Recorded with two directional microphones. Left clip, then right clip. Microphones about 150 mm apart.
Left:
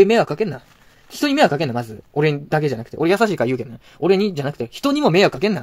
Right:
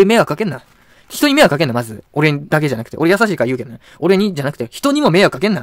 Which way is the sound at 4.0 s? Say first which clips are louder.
Right 3 dB; 35° right (ahead or behind).